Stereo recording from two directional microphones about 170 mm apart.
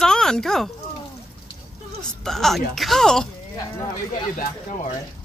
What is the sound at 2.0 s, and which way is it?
Speech, 5° left (ahead or behind).